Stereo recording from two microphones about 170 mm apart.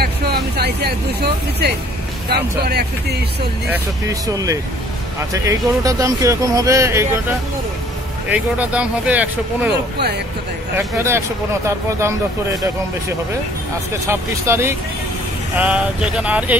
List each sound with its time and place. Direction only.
0.0 s speech: 65° right (ahead or behind)
3.7 s speech: 20° right (ahead or behind)
11.0 s speech: 15° right (ahead or behind)
14.0 s speech: 15° right (ahead or behind)